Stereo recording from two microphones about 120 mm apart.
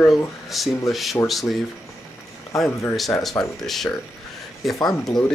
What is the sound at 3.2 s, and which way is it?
Speech, centre (ahead or behind).